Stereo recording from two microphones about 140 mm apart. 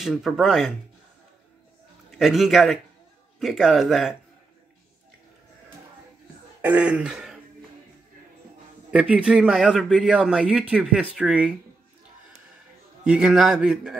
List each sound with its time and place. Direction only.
0.0 s a man's voice: centre (ahead or behind)
2.0 s a man's voice: centre (ahead or behind)
6.6 s speech: 10° right (ahead or behind)
8.9 s a man's voice: 10° right (ahead or behind)
13.0 s a man's voice: 5° right (ahead or behind)